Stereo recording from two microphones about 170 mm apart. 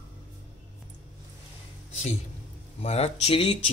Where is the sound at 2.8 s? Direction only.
40° left (ahead or behind).